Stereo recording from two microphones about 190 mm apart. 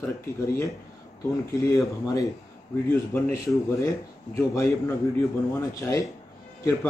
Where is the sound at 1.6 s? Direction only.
15° left (ahead or behind).